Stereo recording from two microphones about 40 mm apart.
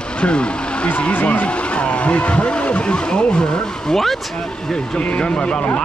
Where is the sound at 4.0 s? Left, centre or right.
Centre.